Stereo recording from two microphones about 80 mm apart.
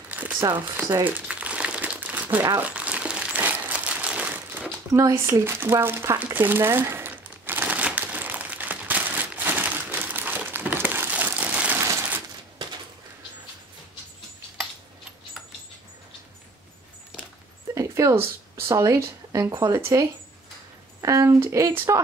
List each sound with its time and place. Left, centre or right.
0.1 s crumpling: centre
0.6 s speech: right
1.2 s crumpling: centre
5.4 s speech: right
6.3 s crumpling: right
11.8 s a sound: right
17.7 s a sound: right
19.5 s speech: right